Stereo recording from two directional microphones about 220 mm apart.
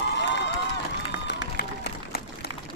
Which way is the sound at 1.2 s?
50° left (ahead or behind).